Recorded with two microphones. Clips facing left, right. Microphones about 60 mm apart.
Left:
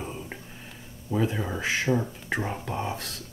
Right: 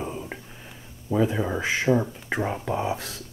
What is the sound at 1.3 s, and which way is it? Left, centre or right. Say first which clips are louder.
Speech: right 3 dB; centre.